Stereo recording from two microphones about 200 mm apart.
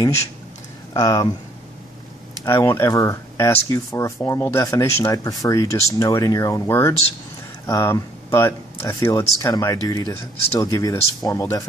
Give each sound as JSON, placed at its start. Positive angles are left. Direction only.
{"t": 0.9, "sound": "speech", "side_deg": 15}
{"t": 2.4, "sound": "speech", "side_deg": 15}